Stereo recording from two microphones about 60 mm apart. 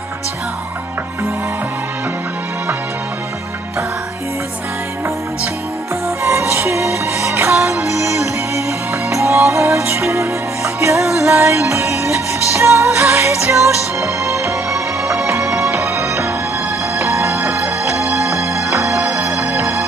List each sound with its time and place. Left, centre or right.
6.0 s music: right
15.7 s music: right